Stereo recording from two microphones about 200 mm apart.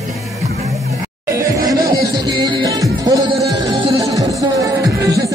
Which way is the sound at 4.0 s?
15° right (ahead or behind).